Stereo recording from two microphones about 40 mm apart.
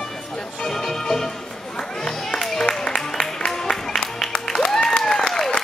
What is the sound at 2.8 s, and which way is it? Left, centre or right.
Music, left.